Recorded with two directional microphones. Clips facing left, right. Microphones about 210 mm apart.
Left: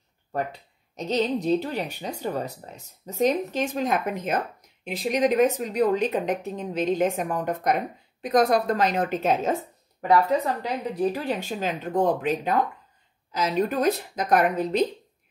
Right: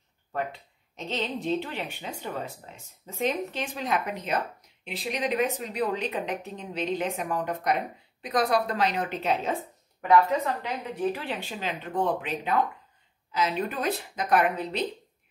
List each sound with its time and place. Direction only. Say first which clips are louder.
0.3 s a woman's voice: left 3 dB; 40° left (ahead or behind)